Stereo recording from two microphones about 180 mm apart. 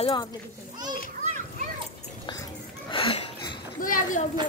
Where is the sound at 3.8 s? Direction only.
50° left (ahead or behind).